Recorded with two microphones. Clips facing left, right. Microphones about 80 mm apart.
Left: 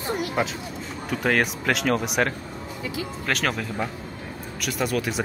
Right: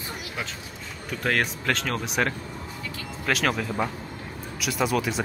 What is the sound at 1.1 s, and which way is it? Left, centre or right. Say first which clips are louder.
Speech: left 3 dB; centre.